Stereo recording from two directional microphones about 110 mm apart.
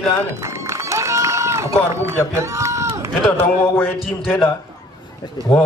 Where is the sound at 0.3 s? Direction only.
25° right (ahead or behind).